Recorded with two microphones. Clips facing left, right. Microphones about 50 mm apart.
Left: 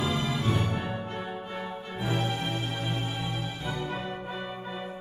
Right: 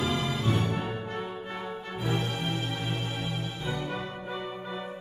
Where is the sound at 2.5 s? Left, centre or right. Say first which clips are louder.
Even; centre.